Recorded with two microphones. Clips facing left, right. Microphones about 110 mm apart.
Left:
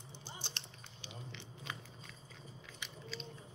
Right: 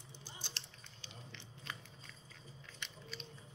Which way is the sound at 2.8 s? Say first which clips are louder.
Even; 5° left (ahead or behind).